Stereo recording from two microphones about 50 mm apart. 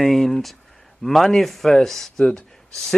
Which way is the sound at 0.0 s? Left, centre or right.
Centre.